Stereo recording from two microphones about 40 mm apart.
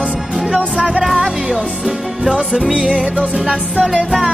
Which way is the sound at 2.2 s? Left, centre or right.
Right.